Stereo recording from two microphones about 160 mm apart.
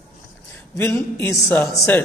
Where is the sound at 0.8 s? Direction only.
15° left (ahead or behind).